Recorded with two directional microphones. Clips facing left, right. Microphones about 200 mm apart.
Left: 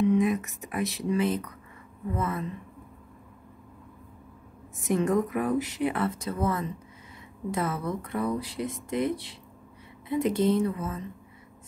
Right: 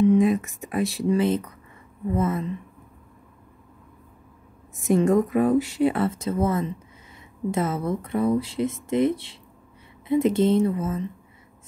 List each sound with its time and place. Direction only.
0.1 s speech: 30° right (ahead or behind)
4.8 s speech: 25° right (ahead or behind)